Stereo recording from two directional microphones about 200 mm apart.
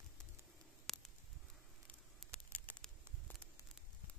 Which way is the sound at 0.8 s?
Centre (ahead or behind).